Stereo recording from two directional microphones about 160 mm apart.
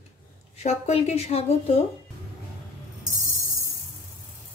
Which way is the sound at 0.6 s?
45° left (ahead or behind).